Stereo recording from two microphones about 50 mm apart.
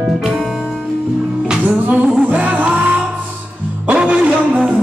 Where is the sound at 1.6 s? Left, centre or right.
Right.